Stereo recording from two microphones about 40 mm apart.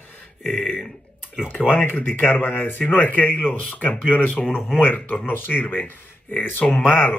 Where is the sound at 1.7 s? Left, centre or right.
Left.